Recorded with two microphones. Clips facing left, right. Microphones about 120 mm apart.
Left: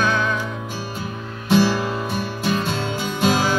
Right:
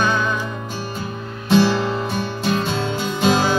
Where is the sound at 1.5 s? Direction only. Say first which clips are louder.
Right 2 dB; 5° left (ahead or behind).